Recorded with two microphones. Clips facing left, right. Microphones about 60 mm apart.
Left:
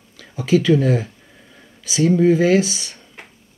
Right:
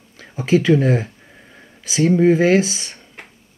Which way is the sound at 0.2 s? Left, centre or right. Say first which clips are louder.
Even; right.